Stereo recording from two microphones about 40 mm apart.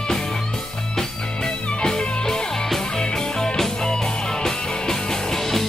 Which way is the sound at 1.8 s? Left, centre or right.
Centre.